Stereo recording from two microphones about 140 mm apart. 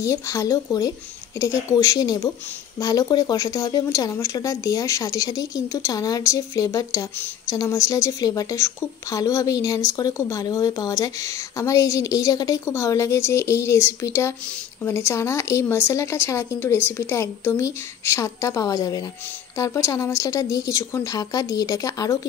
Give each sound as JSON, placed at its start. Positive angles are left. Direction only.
{"t": 0.0, "sound": "speech", "side_deg": 20}